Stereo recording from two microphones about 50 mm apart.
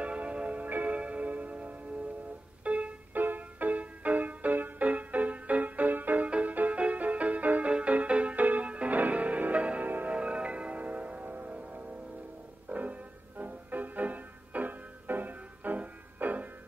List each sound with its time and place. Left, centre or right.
0.0 s tick-tock: right
2.6 s music: right
9.8 s music: right
10.1 s music: right